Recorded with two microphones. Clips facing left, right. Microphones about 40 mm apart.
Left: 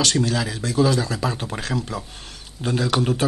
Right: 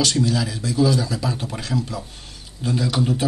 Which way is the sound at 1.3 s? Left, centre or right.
Left.